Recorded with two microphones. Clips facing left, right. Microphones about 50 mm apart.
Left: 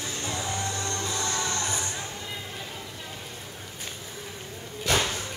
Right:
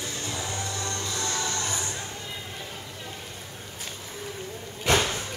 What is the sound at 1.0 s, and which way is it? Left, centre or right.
Music, left.